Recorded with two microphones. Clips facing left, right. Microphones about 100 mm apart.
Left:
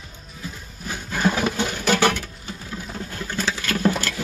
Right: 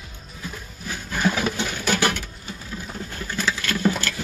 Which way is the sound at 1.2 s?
25° left (ahead or behind).